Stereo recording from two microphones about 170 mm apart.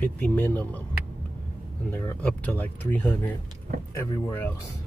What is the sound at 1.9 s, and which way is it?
Speech, 10° left (ahead or behind).